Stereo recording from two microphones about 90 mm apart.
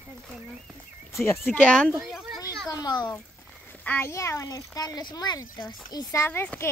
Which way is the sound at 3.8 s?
20° left (ahead or behind).